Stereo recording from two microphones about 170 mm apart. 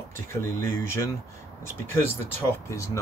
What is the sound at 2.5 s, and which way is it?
Speech, 15° left (ahead or behind).